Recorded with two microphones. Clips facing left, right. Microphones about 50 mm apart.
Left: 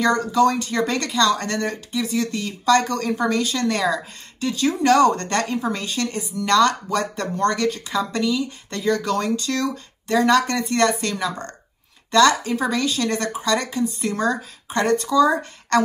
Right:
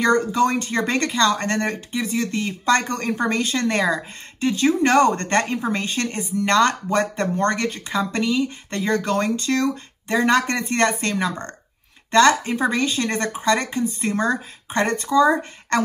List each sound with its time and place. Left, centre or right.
0.0 s speech: right